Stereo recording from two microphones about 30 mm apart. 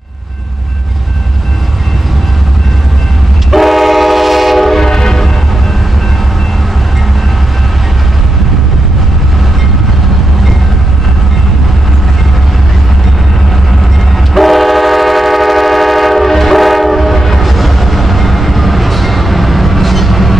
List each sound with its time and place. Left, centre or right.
3.5 s train: centre
4.8 s train: centre
14.3 s train: centre